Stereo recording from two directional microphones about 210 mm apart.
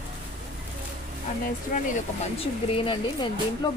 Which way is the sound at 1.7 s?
40° left (ahead or behind).